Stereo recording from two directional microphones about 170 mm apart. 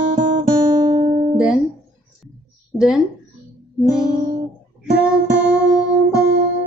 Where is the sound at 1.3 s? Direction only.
5° right (ahead or behind).